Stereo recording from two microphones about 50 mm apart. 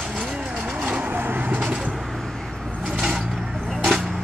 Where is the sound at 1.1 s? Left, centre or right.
Right.